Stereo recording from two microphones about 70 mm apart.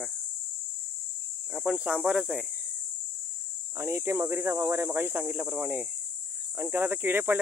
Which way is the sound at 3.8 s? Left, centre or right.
Right.